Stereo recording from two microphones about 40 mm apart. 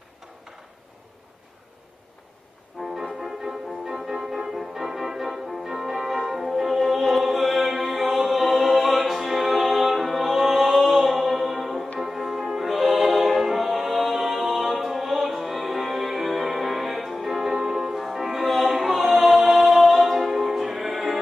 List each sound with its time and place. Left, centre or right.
3.0 s music: centre